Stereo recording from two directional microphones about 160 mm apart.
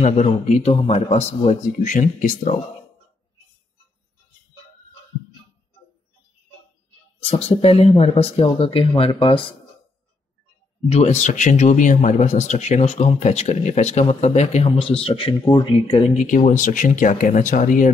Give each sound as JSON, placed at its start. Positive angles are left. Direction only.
{"t": 0.0, "sound": "speech", "side_deg": 45}
{"t": 7.2, "sound": "speech", "side_deg": 40}
{"t": 10.9, "sound": "speech", "side_deg": 45}
{"t": 16.3, "sound": "speech", "side_deg": 50}